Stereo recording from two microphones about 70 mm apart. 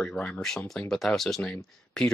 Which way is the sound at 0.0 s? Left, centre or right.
Centre.